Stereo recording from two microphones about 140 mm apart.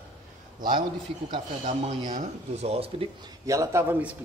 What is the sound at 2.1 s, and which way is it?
Speech, 55° right (ahead or behind).